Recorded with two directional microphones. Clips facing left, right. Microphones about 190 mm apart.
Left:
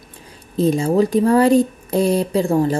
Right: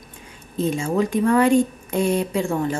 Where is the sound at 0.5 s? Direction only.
35° left (ahead or behind).